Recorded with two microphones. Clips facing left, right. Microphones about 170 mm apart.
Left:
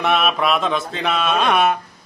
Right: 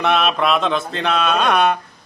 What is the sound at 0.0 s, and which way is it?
Speech, centre (ahead or behind).